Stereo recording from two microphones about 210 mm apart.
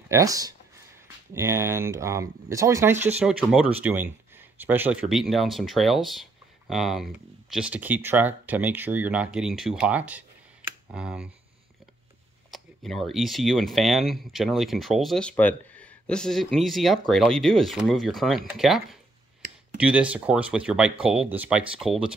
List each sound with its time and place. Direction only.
0.1 s speech: 15° right (ahead or behind)
12.4 s speech: centre (ahead or behind)